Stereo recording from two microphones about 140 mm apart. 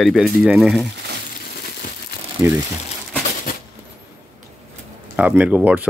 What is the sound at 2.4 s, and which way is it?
Speech, 15° right (ahead or behind).